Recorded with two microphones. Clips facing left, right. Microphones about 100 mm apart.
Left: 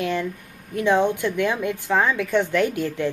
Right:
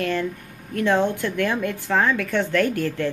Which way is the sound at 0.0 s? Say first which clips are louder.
Right 1 dB; 15° left (ahead or behind).